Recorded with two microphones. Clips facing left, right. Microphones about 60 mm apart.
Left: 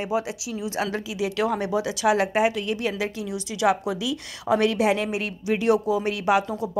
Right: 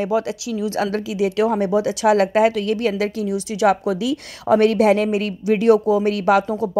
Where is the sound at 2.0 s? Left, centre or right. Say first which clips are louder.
Right 5 dB; right.